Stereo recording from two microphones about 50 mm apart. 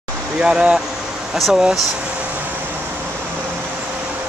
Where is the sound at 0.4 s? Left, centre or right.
Centre.